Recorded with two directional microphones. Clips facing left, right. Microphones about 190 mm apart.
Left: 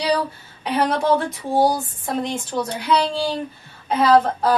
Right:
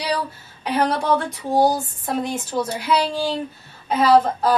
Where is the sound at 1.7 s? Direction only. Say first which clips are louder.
Even; 10° right (ahead or behind).